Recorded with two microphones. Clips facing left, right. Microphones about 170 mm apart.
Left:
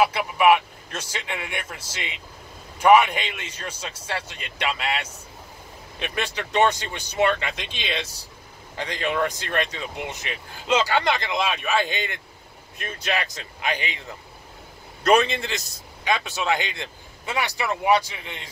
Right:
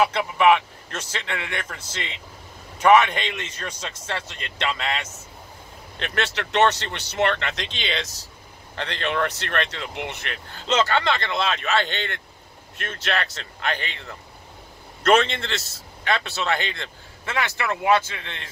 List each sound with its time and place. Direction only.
0.0 s a man's voice: 10° left (ahead or behind)
10.0 s speech: 60° right (ahead or behind)
10.3 s a man's voice: 10° left (ahead or behind)